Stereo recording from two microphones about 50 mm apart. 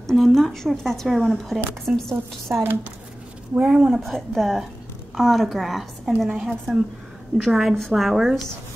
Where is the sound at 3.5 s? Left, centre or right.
Centre.